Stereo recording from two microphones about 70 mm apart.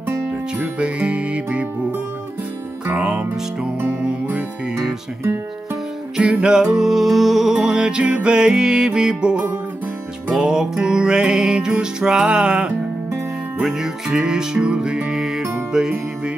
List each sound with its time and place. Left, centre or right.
0.6 s music: centre
6.1 s music: centre